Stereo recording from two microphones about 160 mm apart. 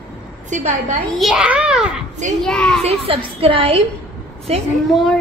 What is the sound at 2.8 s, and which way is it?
A woman's voice, 40° right (ahead or behind).